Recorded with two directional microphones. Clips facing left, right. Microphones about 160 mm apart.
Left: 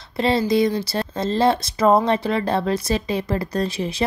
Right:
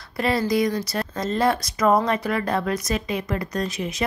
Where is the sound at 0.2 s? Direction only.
25° left (ahead or behind).